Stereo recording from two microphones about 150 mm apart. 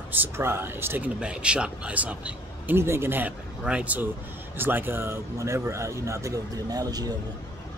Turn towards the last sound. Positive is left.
turn(degrees=-25)  # may be behind; listen again after turning